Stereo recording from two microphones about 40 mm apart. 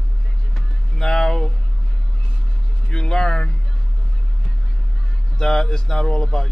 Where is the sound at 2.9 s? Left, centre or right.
Centre.